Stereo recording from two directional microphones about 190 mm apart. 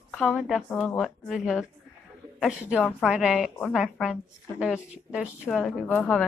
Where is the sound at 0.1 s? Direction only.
5° left (ahead or behind).